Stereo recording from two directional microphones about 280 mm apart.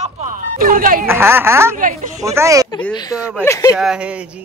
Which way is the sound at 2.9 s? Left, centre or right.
Centre.